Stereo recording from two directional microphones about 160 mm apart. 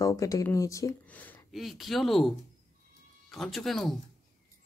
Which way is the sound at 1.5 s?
Centre (ahead or behind).